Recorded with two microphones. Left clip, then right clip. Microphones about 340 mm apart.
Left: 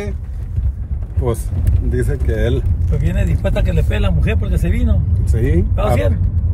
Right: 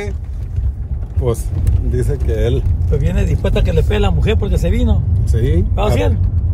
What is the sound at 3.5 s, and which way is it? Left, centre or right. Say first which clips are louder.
Speech: right 4 dB; centre.